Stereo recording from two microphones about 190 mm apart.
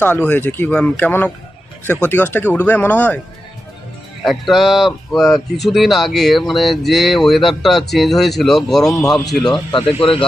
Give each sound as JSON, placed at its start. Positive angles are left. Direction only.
{"t": 0.3, "sound": "speech", "side_deg": 10}
{"t": 4.2, "sound": "speech", "side_deg": 0}
{"t": 9.7, "sound": "speech", "side_deg": 25}